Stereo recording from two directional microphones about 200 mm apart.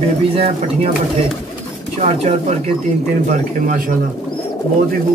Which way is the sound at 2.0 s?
35° right (ahead or behind).